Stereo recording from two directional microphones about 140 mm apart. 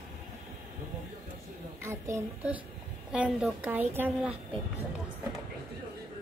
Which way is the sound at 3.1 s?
5° right (ahead or behind).